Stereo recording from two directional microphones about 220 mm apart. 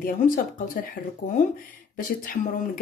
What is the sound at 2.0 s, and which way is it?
Speech, 40° left (ahead or behind).